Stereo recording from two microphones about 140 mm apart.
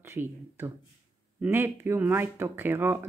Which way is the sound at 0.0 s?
15° right (ahead or behind).